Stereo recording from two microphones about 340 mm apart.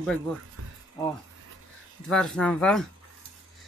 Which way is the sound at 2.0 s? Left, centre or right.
Centre.